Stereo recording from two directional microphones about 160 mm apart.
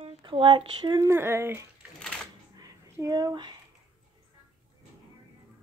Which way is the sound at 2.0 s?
5° left (ahead or behind).